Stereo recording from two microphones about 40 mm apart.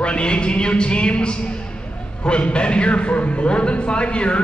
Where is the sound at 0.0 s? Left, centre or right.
Left.